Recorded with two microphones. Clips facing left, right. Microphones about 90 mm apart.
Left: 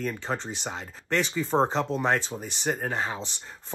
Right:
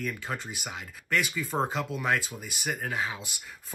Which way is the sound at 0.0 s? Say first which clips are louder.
Left 4 dB; 30° left (ahead or behind).